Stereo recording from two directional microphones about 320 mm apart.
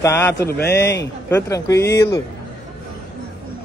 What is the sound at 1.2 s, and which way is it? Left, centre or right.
Speech, centre.